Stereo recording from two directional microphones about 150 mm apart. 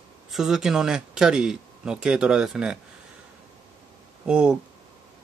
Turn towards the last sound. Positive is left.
turn(degrees=-5)  # may be behind; listen again after turning